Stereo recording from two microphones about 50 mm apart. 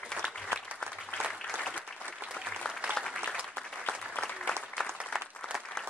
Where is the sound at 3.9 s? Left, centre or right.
Left.